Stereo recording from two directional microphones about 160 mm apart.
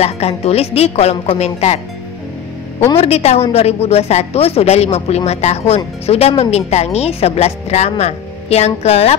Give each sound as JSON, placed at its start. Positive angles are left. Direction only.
{"t": 0.0, "sound": "speech", "side_deg": 40}
{"t": 3.0, "sound": "speech", "side_deg": 40}